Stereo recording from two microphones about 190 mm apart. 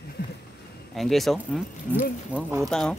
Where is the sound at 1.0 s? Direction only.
Centre (ahead or behind).